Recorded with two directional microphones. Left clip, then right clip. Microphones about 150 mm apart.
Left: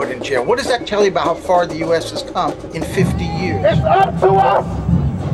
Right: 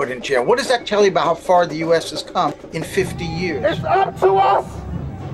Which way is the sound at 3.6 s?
35° right (ahead or behind).